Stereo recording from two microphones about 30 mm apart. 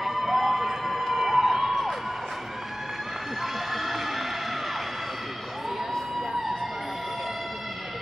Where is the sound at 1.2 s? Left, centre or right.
Centre.